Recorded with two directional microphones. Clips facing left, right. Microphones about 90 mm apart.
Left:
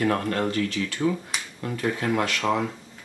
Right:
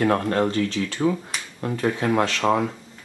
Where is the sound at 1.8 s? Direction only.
35° right (ahead or behind).